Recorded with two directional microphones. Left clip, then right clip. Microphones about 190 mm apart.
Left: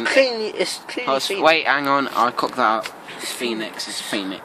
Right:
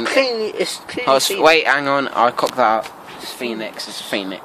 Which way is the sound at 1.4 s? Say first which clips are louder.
Right 1 dB; 25° right (ahead or behind).